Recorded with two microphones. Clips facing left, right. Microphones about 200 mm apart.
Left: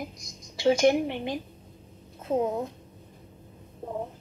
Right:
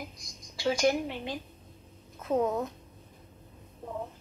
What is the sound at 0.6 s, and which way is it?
A woman's voice, 25° left (ahead or behind).